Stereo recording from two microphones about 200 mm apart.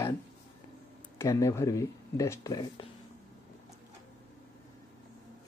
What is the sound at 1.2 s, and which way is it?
Speech, 15° left (ahead or behind).